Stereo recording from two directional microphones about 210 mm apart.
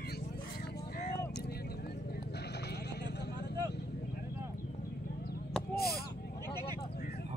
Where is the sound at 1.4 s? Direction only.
50° left (ahead or behind).